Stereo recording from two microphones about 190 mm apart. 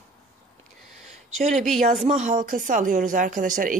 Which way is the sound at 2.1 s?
40° right (ahead or behind).